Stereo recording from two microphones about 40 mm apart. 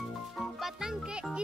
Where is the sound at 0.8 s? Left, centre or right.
Centre.